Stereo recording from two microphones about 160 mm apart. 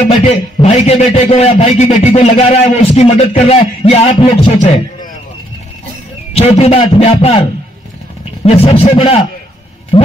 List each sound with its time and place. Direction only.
0.1 s a man's voice: 40° left (ahead or behind)
6.3 s a man's voice: 40° left (ahead or behind)
8.5 s a man's voice: 35° left (ahead or behind)
9.9 s a sound: 35° left (ahead or behind)